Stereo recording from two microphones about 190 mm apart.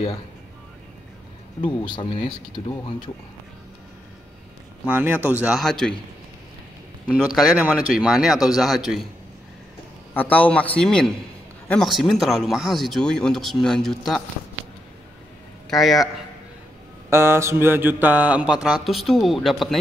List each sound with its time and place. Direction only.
1.6 s speech: 25° left (ahead or behind)
4.8 s speech: 10° right (ahead or behind)
7.1 s speech: 5° right (ahead or behind)
10.1 s a man's voice: 10° left (ahead or behind)
15.7 s speech: centre (ahead or behind)
17.1 s speech: 15° right (ahead or behind)